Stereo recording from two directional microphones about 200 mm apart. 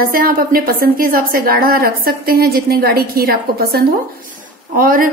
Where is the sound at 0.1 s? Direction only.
45° right (ahead or behind).